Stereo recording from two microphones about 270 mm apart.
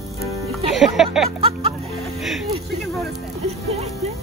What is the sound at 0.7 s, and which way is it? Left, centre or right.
Music, centre.